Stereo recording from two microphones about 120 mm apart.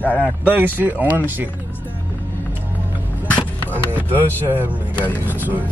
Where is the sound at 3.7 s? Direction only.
15° right (ahead or behind).